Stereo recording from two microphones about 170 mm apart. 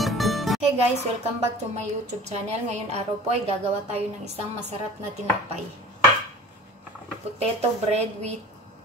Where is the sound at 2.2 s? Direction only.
40° right (ahead or behind).